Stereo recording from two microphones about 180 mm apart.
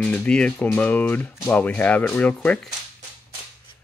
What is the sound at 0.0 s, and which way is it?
Speech, 5° left (ahead or behind).